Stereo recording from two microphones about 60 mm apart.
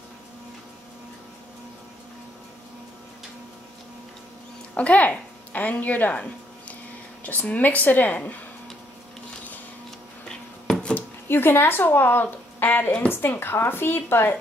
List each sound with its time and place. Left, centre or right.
4.7 s a woman's voice: left
10.2 s a sound: centre
11.0 s speech: left